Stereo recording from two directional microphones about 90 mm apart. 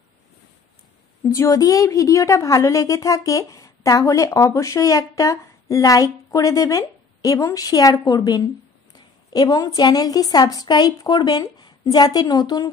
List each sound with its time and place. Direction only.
1.2 s a woman's voice: 35° left (ahead or behind)